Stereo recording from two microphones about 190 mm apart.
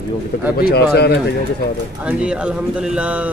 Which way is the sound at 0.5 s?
55° left (ahead or behind).